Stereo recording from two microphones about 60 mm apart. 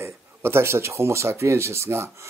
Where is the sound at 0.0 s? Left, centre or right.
Right.